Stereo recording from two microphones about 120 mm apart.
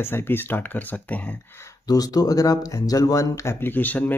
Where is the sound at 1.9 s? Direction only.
30° left (ahead or behind).